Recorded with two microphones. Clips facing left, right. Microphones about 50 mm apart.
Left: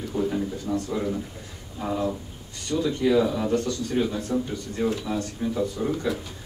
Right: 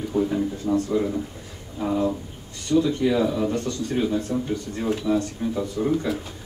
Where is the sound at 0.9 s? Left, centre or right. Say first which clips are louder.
Right 4 dB; centre.